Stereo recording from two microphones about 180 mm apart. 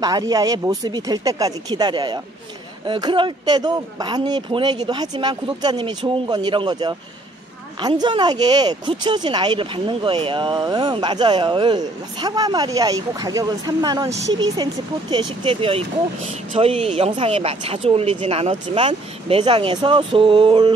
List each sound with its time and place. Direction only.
0.0 s speech: 20° right (ahead or behind)